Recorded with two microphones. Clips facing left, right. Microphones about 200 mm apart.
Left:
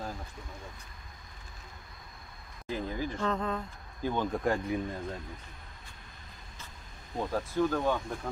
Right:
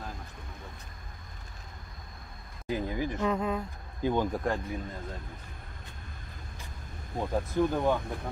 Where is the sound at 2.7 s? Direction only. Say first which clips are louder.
Right 3 dB; 15° right (ahead or behind).